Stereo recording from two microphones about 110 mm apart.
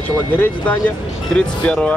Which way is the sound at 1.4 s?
10° left (ahead or behind).